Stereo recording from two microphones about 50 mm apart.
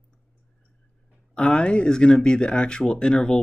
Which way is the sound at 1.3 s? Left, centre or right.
Centre.